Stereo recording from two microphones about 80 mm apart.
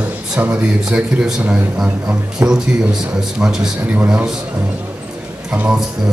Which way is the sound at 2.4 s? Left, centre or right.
Right.